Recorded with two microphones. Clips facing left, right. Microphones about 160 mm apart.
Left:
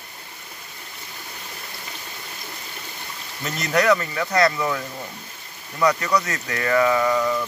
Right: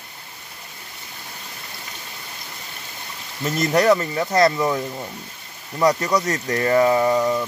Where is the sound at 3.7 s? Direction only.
30° right (ahead or behind).